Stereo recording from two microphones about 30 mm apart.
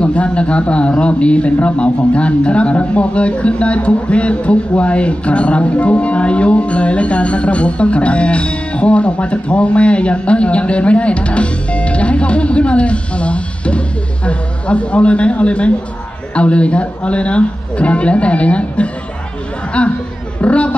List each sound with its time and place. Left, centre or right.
0.0 s a man's voice: left
20.3 s chatter: left